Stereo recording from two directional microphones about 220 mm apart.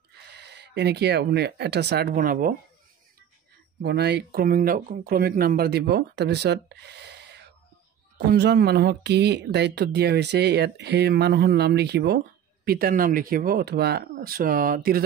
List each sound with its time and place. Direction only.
0.3 s speech: 50° right (ahead or behind)
3.8 s speech: 50° right (ahead or behind)